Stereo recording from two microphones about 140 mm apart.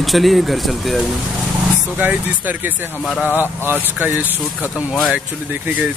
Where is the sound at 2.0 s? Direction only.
10° right (ahead or behind).